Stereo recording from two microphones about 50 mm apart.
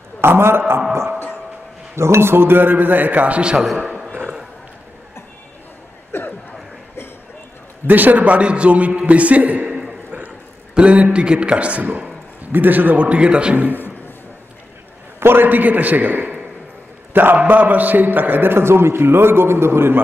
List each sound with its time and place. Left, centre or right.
0.2 s a man's voice: right
2.0 s a man's voice: right
3.7 s a man's voice: right
7.8 s a man's voice: right
10.7 s a man's voice: right
13.0 s a man's voice: right
15.1 s a man's voice: right